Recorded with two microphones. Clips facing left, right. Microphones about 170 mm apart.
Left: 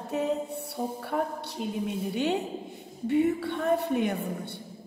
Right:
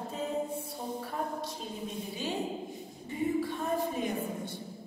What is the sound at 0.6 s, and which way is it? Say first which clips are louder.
A woman's voice: left 4 dB; 70° left (ahead or behind).